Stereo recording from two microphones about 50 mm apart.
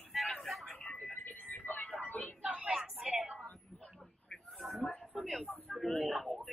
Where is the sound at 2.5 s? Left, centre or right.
Right.